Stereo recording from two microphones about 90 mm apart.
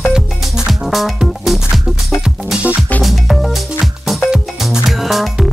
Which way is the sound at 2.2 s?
15° right (ahead or behind).